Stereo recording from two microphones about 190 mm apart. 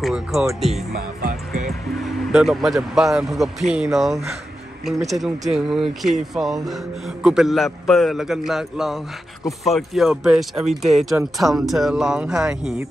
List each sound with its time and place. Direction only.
0.0 s speech: 5° right (ahead or behind)
0.9 s music: 50° right (ahead or behind)
1.7 s speech: centre (ahead or behind)